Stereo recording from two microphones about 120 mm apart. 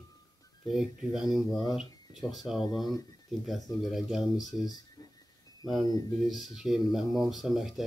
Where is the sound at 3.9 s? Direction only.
5° right (ahead or behind).